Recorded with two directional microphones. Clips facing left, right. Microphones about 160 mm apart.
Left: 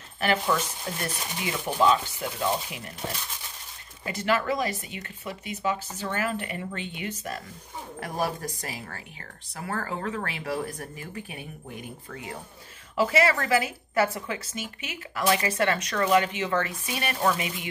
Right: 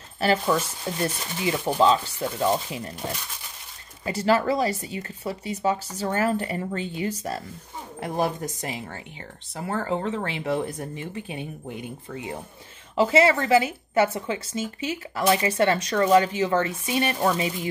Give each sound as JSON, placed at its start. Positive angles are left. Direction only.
{"t": 0.2, "sound": "a woman's voice", "side_deg": -30}
{"t": 4.0, "sound": "speech", "side_deg": -35}
{"t": 8.0, "sound": "a woman's voice", "side_deg": -20}